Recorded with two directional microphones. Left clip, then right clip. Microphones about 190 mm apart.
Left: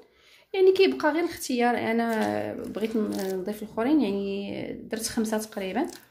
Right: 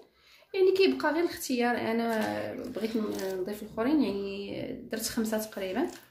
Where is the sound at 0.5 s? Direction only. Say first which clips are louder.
Left 4 dB; 45° left (ahead or behind).